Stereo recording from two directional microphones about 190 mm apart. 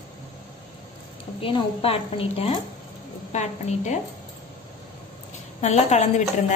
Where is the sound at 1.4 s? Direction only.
30° left (ahead or behind).